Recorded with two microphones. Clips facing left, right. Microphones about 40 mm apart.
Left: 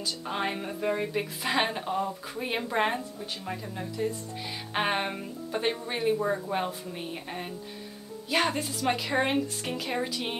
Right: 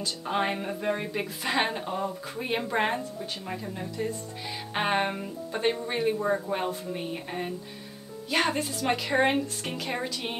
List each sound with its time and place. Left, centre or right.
0.0 s a woman's voice: centre